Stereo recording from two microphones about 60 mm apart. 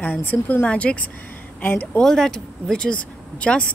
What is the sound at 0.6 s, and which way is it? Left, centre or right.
A woman's voice, left.